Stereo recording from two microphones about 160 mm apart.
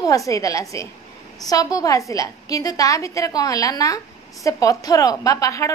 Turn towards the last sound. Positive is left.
turn(degrees=20)  # may be behind; listen again after turning